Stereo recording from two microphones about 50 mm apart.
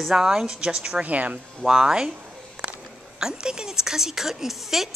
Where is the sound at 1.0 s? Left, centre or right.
Right.